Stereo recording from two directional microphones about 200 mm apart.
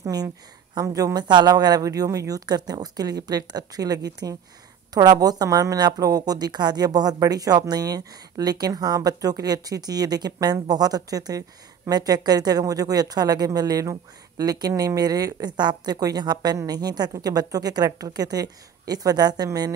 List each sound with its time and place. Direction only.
0.0 s speech: 20° right (ahead or behind)